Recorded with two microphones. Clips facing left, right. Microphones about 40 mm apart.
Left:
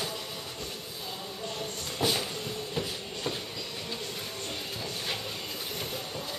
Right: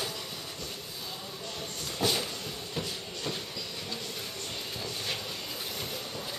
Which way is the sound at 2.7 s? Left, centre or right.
Centre.